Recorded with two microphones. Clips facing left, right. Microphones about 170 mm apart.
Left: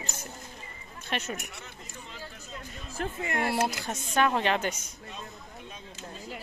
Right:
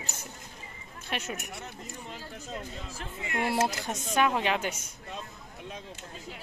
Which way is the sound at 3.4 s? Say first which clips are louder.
Right 1 dB; 15° right (ahead or behind).